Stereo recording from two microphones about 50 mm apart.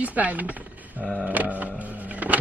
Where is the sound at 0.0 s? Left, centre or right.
Right.